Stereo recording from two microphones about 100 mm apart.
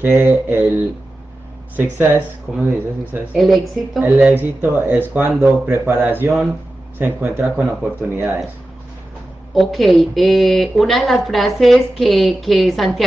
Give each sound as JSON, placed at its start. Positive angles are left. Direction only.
{"t": 0.0, "sound": "speech", "side_deg": -20}
{"t": 3.3, "sound": "a woman's voice", "side_deg": 0}
{"t": 4.0, "sound": "speech", "side_deg": -20}
{"t": 9.5, "sound": "a woman's voice", "side_deg": 0}